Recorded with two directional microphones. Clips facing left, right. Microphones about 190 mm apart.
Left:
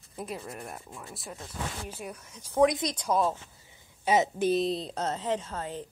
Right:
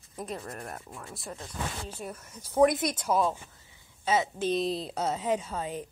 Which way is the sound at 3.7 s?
15° left (ahead or behind).